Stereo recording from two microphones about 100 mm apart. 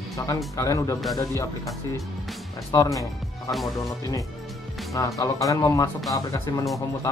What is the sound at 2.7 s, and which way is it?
Speech, 35° left (ahead or behind).